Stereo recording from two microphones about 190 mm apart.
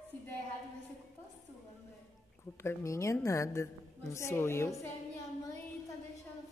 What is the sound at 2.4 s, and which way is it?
A woman's voice, 15° left (ahead or behind).